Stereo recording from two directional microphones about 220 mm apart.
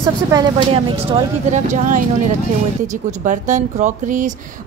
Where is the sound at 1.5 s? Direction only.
35° right (ahead or behind).